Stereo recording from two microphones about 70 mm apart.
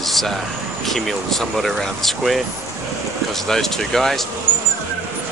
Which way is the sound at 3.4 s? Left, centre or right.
Centre.